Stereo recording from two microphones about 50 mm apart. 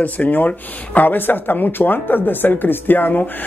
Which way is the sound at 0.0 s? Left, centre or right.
Left.